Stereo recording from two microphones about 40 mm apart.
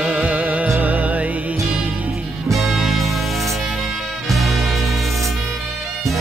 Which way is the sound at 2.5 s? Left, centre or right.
Centre.